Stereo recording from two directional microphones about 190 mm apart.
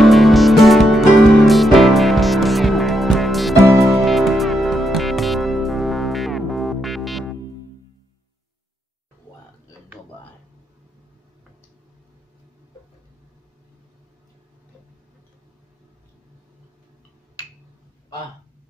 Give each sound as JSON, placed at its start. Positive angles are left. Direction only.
{"t": 0.0, "sound": "music", "side_deg": 0}